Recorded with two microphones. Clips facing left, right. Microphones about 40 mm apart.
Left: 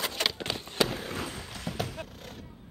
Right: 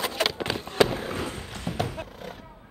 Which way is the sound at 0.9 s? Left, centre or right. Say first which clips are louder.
Right 5 dB; centre.